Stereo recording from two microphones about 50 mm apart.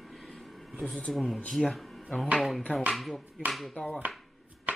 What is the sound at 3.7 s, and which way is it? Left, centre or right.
Speech, left.